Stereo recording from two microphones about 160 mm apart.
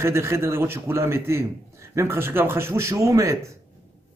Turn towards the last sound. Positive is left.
turn(degrees=-20)  # may be behind; listen again after turning